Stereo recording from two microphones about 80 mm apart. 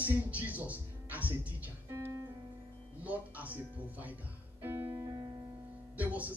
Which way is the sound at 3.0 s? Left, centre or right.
Centre.